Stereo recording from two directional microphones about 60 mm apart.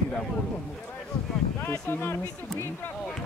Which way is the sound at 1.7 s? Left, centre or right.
Left.